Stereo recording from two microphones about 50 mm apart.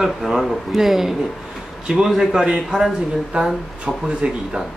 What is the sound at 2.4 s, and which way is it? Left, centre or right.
Speech, centre.